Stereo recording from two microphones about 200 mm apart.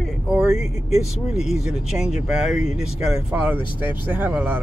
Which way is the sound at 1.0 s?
Centre (ahead or behind).